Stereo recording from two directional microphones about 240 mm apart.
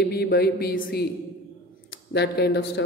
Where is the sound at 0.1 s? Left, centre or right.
Left.